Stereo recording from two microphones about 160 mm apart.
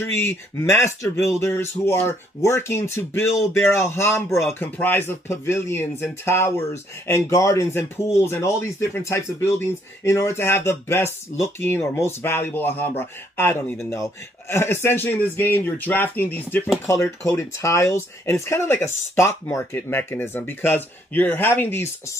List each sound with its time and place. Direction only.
0.0 s speech: 15° left (ahead or behind)